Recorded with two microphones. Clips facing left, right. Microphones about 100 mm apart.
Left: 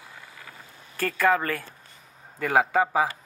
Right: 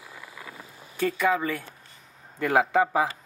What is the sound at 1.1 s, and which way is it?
Speech, 85° left.